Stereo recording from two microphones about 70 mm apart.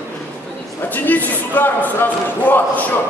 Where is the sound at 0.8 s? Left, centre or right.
Left.